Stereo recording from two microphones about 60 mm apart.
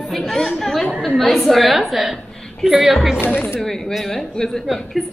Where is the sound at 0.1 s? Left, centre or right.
Centre.